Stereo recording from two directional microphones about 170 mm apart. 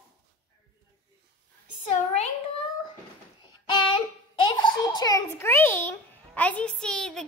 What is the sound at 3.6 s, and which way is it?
Child singing, 30° left (ahead or behind).